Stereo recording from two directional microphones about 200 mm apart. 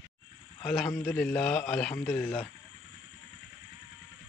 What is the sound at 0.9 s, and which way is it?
A man's voice, 10° left (ahead or behind).